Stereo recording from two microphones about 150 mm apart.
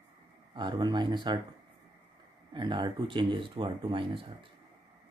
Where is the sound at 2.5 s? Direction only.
30° right (ahead or behind).